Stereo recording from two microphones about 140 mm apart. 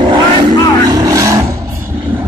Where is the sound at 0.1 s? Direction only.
30° right (ahead or behind).